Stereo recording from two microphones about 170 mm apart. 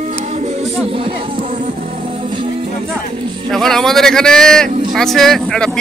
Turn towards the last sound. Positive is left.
turn(degrees=5)  # may be behind; listen again after turning